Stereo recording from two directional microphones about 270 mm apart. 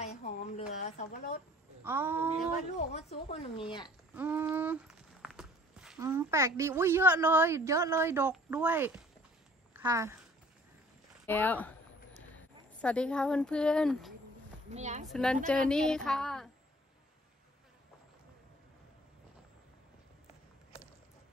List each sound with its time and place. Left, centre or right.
0.0 s a sound: left
0.7 s a woman's voice: left
1.8 s speech: centre
3.3 s speech: left
4.1 s speech: centre
11.2 s speech: centre
12.8 s a woman's voice: centre
14.7 s speech: right
15.0 s a woman's voice: centre